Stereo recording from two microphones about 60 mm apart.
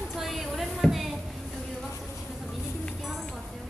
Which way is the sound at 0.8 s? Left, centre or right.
Centre.